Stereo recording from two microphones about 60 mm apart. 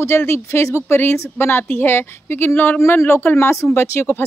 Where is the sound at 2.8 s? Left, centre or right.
Left.